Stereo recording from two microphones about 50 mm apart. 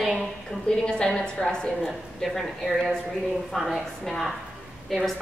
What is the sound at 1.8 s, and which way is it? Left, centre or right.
A woman's voice, centre.